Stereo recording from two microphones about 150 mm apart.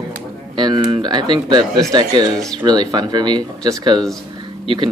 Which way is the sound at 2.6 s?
25° right (ahead or behind).